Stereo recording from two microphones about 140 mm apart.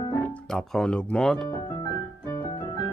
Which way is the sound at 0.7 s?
5° left (ahead or behind).